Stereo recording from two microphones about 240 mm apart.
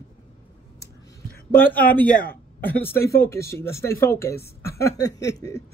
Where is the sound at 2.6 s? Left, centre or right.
Centre.